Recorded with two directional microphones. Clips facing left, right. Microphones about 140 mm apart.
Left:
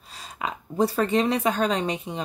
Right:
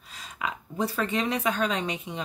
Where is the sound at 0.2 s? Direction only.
35° left (ahead or behind).